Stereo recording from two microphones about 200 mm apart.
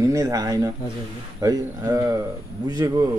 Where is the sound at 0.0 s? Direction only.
15° right (ahead or behind).